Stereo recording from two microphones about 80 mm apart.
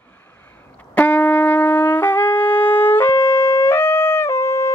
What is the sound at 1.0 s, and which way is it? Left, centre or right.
Shofar, left.